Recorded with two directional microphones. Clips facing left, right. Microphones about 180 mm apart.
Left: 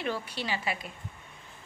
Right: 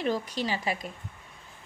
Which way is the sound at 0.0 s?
40° right (ahead or behind).